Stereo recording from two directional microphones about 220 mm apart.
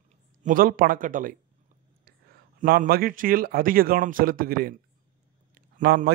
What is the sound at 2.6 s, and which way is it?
A man's voice, 40° right (ahead or behind).